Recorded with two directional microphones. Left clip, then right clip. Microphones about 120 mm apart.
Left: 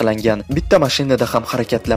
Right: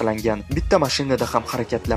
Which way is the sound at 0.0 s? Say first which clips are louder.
Left 5 dB; 30° left (ahead or behind).